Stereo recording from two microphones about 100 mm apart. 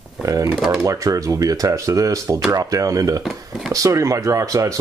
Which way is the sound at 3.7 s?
35° right (ahead or behind).